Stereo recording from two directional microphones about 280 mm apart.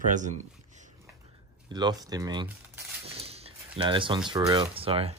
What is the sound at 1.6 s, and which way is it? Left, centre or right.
Speech, centre.